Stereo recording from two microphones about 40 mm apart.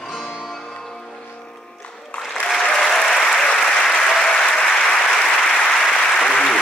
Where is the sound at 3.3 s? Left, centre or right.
Centre.